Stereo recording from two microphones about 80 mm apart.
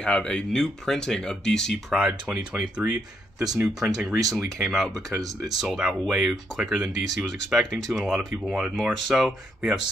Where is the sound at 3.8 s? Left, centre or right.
Centre.